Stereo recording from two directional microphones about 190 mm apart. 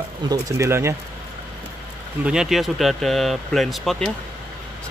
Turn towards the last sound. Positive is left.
turn(degrees=0)  # may be behind; listen again after turning